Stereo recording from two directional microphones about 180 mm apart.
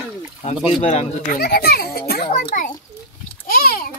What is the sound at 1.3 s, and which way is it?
Speech, 60° left (ahead or behind).